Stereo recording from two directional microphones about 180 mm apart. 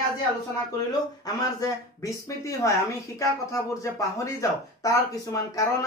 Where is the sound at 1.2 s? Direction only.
20° left (ahead or behind).